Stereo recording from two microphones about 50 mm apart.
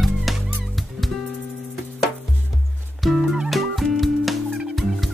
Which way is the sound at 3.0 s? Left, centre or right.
Centre.